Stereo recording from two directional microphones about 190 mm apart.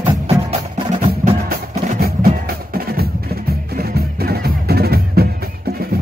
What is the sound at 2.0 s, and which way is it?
Music, 50° right (ahead or behind).